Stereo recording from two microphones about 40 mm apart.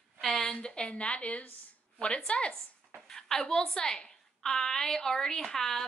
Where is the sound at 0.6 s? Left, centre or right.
Left.